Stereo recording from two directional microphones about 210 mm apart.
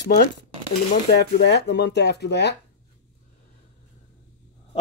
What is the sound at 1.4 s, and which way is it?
Speech, 50° left (ahead or behind).